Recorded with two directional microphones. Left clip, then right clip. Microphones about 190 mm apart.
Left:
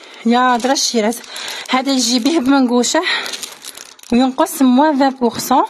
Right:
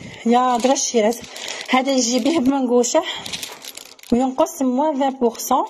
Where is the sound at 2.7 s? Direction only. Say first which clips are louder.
Left 2 dB; 25° left (ahead or behind).